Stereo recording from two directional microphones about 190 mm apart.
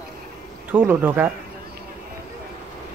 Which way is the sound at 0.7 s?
10° right (ahead or behind).